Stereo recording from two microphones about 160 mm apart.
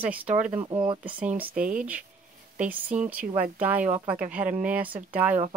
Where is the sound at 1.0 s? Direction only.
10° right (ahead or behind).